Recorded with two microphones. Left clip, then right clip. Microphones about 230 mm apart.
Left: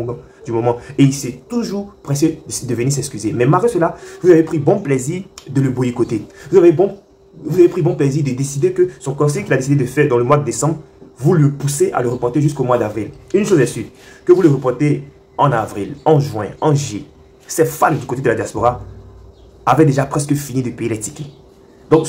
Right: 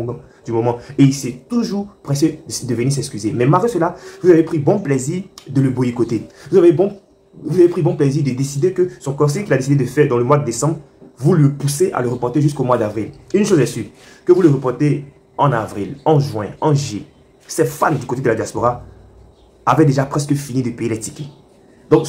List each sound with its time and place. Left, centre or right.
0.0 s speech: centre